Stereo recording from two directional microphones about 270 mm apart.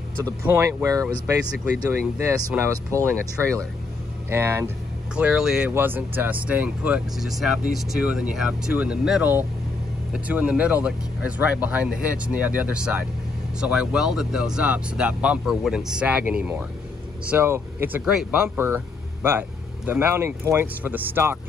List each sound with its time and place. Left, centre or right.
0.2 s speech: centre
19.9 s speech: centre